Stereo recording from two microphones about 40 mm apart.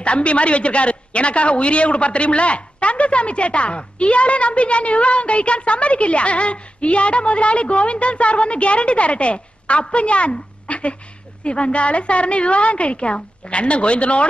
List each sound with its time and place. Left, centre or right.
0.0 s a woman's voice: left